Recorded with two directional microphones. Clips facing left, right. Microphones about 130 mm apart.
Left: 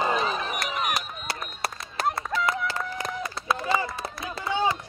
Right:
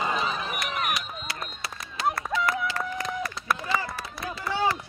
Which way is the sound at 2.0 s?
55° left (ahead or behind).